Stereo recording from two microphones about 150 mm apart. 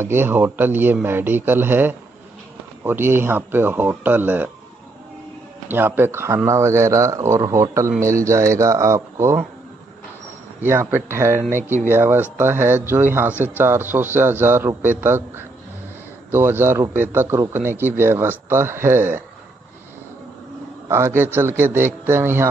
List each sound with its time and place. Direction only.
0.0 s a man's voice: 15° right (ahead or behind)
5.7 s speech: 15° right (ahead or behind)
10.6 s a man's voice: 15° right (ahead or behind)
20.9 s a man's voice: 15° right (ahead or behind)